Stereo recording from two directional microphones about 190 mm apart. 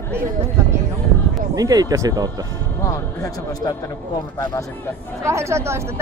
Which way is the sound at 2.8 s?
20° left (ahead or behind).